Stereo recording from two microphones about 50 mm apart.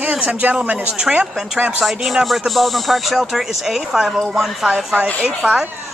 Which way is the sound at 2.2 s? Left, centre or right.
Centre.